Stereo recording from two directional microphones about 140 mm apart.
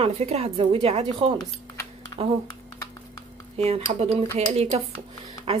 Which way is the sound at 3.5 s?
50° right (ahead or behind).